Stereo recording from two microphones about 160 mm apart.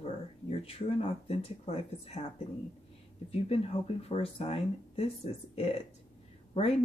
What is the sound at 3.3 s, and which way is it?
Speech, 40° left (ahead or behind).